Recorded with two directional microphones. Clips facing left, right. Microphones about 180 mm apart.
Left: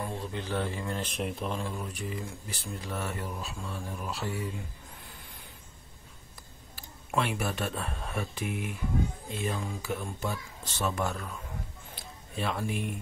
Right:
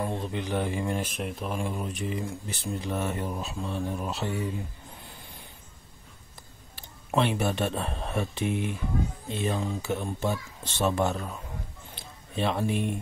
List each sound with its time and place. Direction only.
0.0 s a man's voice: 20° right (ahead or behind)
1.1 s speech: centre (ahead or behind)
1.6 s speech: 20° right (ahead or behind)
6.7 s speech: 25° right (ahead or behind)
11.9 s a sound: 25° right (ahead or behind)